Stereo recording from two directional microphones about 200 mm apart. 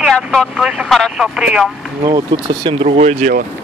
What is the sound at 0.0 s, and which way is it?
Speech, centre (ahead or behind).